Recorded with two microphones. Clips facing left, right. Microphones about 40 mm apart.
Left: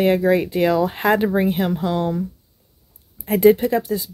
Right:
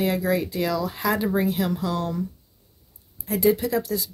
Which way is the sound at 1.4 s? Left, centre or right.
Left.